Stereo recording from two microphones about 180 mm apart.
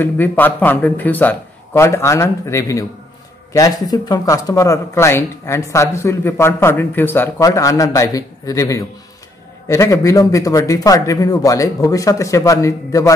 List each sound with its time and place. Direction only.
0.0 s a man's voice: 10° left (ahead or behind)